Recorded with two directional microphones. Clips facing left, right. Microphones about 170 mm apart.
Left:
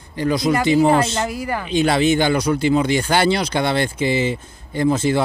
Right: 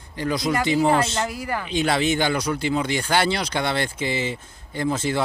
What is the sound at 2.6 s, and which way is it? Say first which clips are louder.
Speech: left 6 dB; 20° left (ahead or behind).